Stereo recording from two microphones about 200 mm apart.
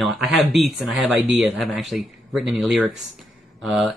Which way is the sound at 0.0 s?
Centre (ahead or behind).